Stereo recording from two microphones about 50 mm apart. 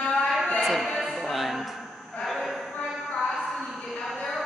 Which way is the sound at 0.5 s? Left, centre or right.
Centre.